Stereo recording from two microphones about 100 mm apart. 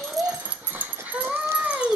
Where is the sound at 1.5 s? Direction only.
10° right (ahead or behind).